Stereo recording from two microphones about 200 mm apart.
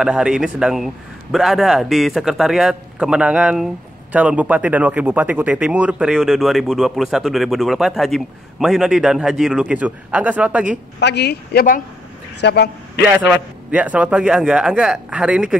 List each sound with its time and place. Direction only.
0.0 s a man's voice: 5° right (ahead or behind)
11.0 s speech: 60° left (ahead or behind)
12.4 s a man's voice: 60° left (ahead or behind)
13.3 s a man's voice: 5° right (ahead or behind)